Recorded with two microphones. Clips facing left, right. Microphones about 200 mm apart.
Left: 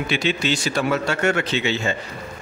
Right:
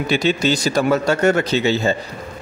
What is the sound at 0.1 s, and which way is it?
Speech, 40° right (ahead or behind).